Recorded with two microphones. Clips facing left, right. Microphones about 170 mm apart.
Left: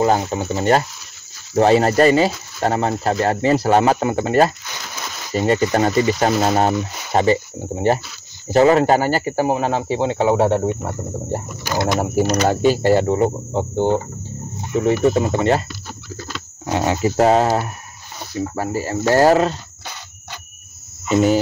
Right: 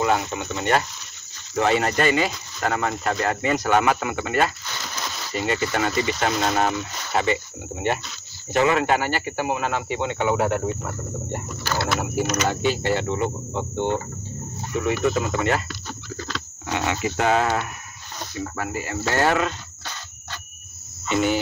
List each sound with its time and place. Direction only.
0.0 s speech: 35° left (ahead or behind)
11.6 s speech: 15° left (ahead or behind)
12.0 s speech: 35° left (ahead or behind)
15.7 s speech: 10° left (ahead or behind)
16.6 s speech: 35° left (ahead or behind)
21.1 s speech: 35° left (ahead or behind)